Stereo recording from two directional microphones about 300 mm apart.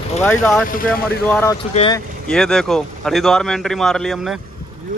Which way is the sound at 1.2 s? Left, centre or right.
Centre.